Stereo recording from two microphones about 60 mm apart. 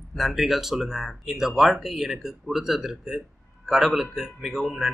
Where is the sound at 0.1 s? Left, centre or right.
Centre.